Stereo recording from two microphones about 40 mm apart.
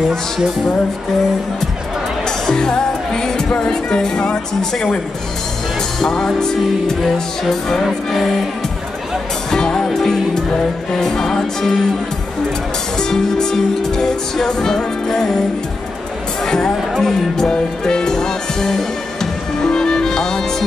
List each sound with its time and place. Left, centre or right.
2.5 s music: centre
5.9 s music: centre
9.5 s music: centre
13.1 s music: centre
16.4 s speech: centre
16.9 s music: centre